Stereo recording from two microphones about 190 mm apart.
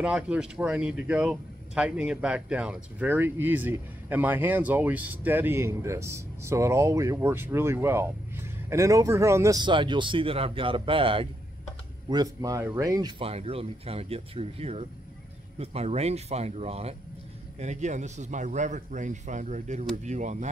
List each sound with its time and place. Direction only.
0.0 s speech: 5° right (ahead or behind)
13.2 s a man's voice: 30° right (ahead or behind)